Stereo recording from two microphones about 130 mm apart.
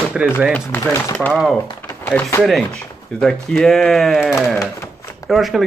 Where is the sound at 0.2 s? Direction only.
5° right (ahead or behind).